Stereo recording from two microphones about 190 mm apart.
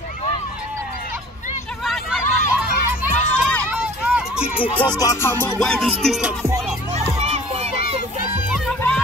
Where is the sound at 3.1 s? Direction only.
5° left (ahead or behind).